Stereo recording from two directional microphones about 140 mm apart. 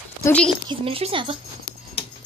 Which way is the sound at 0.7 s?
40° right (ahead or behind).